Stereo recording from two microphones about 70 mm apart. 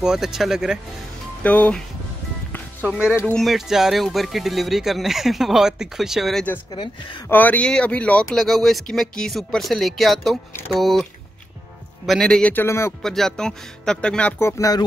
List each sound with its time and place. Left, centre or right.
0.0 s speech: centre
1.4 s speech: centre
3.3 s speech: centre
6.7 s speech: left
7.2 s speech: left
8.4 s speech: centre
12.1 s speech: centre
12.5 s speech: left
13.0 s speech: centre
14.6 s speech: left